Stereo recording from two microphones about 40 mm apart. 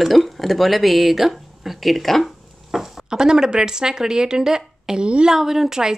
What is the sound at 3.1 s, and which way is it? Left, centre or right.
Speech, centre.